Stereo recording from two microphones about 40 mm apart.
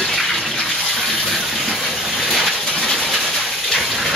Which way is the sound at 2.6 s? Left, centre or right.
Centre.